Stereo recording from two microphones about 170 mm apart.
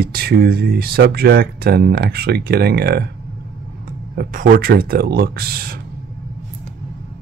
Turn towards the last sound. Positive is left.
turn(degrees=-60)  # may be behind; listen again after turning